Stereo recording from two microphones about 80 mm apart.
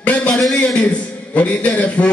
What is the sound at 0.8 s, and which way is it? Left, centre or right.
A man's voice, centre.